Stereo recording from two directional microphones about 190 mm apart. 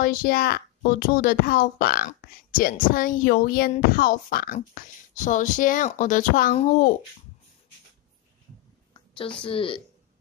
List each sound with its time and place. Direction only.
0.0 s a child's voice: 50° left (ahead or behind)
9.4 s speech: 25° left (ahead or behind)